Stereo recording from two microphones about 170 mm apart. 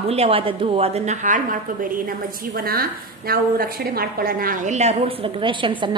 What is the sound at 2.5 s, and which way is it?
A woman's voice, 60° right (ahead or behind).